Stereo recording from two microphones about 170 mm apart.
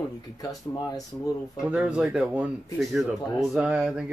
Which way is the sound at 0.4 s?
20° left (ahead or behind).